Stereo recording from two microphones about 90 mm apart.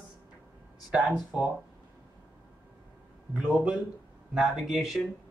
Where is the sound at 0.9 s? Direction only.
10° right (ahead or behind).